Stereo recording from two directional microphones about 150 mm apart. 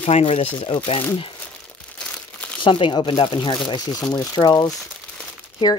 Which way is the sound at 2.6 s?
35° left (ahead or behind).